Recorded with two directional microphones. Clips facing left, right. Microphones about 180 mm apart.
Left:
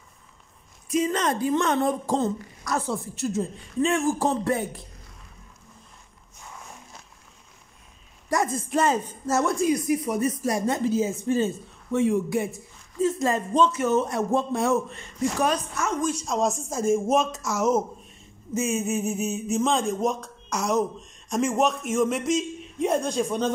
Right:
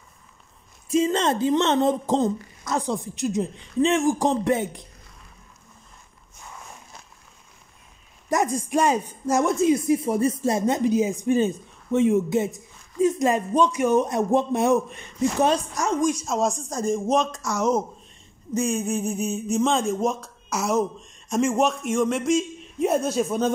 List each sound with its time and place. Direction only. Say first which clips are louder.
0.8 s a woman's voice: right 3 dB; 25° right (ahead or behind)
8.3 s a woman's voice: right 2 dB; 15° right (ahead or behind); by 15.9 s 30° right (ahead or behind)
16.0 s speech: right 4 dB; 10° right (ahead or behind)
16.3 s speech: right 1 dB; centre (ahead or behind)